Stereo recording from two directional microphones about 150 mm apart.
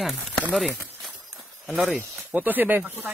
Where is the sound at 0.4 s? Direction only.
5° left (ahead or behind).